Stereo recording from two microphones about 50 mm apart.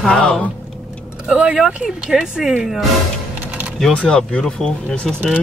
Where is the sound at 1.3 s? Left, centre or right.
Centre.